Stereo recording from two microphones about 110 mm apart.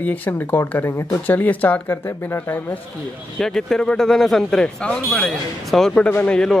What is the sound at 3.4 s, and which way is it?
Speech, 5° left (ahead or behind).